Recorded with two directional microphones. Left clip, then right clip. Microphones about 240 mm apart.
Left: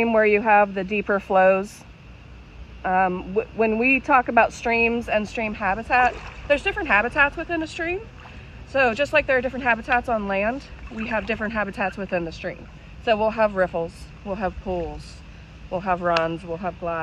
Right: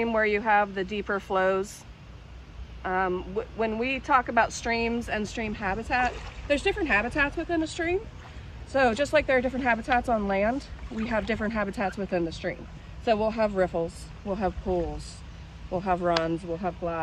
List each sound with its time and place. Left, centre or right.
0.0 s speech: left
2.8 s speech: left; by 17.0 s centre